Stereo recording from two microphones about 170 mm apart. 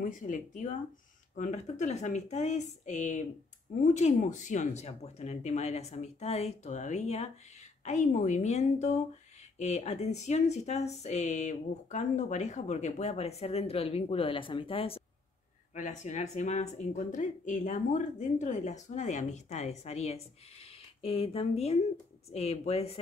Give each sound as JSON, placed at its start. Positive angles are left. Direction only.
{"t": 0.0, "sound": "speech", "side_deg": 50}
{"t": 15.7, "sound": "speech", "side_deg": 45}